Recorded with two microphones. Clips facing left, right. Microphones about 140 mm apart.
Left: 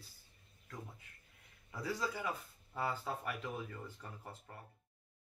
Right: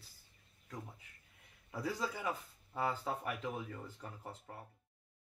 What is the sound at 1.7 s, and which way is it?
A man's voice, 15° right (ahead or behind).